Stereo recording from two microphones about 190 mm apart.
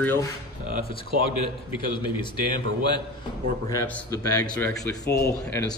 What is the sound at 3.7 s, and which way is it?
A man's voice, 10° left (ahead or behind).